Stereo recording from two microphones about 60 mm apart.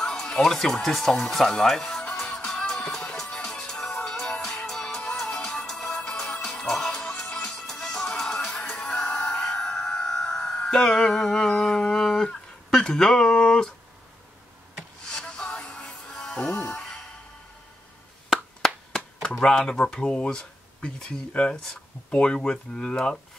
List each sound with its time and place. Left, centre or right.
0.0 s speech: centre
1.3 s music: centre
15.0 s music: centre
18.9 s speech: centre
21.5 s speech: centre